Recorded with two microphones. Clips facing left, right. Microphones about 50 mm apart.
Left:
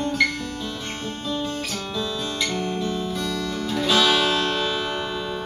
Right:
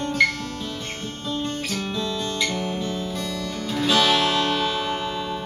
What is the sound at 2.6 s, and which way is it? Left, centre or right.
Music, centre.